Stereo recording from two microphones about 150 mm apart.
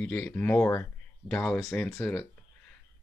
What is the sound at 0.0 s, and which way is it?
Speech, 10° left (ahead or behind).